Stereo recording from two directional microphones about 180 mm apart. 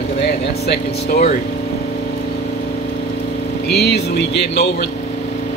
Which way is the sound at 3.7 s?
65° left (ahead or behind).